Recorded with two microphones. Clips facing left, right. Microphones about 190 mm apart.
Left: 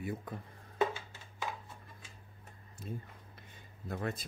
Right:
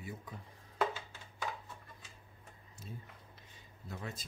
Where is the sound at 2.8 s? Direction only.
55° left (ahead or behind).